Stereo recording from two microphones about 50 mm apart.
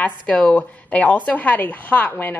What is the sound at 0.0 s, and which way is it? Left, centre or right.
Speech, left.